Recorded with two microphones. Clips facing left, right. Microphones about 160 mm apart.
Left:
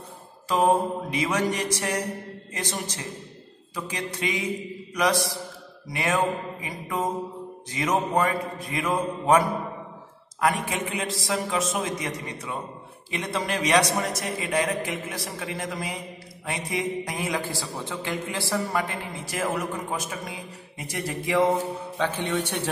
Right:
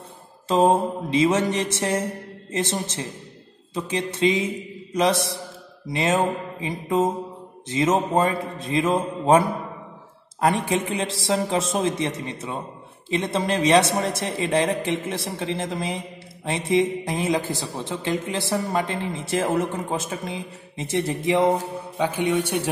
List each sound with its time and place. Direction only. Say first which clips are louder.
0.5 s a man's voice: right 3 dB; 25° right (ahead or behind)